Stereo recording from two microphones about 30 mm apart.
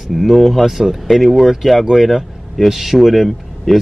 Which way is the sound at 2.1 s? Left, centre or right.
Centre.